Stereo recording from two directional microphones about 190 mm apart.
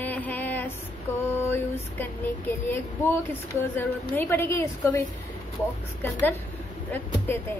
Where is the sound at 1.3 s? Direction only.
10° left (ahead or behind).